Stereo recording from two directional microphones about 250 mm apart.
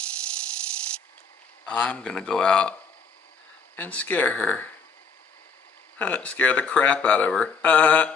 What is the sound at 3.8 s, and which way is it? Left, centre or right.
Speech, centre.